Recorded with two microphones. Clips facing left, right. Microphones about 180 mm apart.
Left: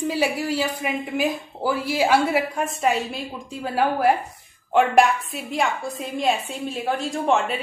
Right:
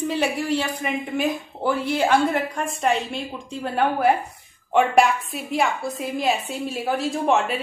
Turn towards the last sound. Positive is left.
turn(degrees=0)  # may be behind; listen again after turning